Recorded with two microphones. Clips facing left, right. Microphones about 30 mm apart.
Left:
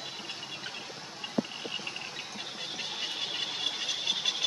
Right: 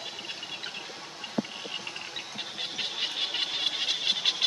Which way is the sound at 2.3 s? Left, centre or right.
Right.